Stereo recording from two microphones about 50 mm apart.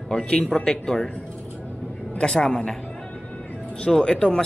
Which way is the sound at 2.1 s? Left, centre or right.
Centre.